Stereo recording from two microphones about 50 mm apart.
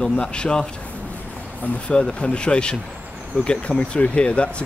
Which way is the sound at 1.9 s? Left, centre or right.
Centre.